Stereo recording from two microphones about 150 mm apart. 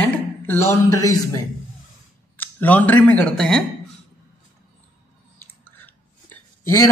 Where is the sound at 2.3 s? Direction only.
10° left (ahead or behind).